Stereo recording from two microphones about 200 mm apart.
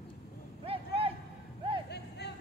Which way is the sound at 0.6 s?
30° right (ahead or behind).